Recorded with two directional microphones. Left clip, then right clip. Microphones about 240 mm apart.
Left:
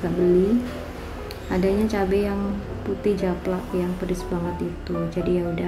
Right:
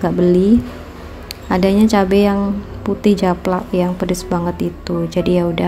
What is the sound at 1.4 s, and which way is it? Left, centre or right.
A woman's voice, right.